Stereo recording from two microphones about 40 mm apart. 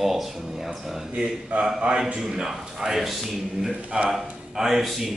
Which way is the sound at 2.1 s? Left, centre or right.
Centre.